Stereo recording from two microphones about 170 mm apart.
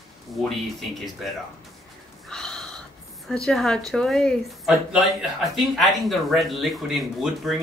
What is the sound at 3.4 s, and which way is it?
Speech, centre (ahead or behind).